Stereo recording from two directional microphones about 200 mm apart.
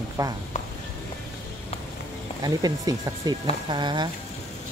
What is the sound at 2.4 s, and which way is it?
Speech, 20° right (ahead or behind).